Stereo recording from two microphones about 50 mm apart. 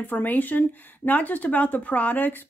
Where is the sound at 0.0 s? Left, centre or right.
Left.